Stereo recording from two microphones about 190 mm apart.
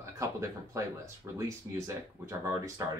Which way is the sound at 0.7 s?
15° right (ahead or behind).